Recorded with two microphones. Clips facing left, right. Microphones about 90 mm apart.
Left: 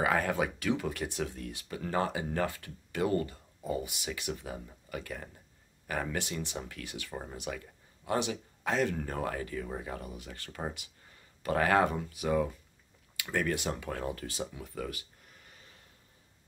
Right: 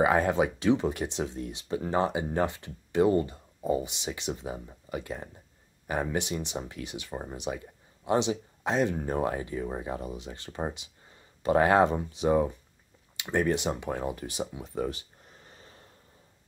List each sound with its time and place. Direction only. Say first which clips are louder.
0.0 s speech: right 5 dB; 25° right (ahead or behind)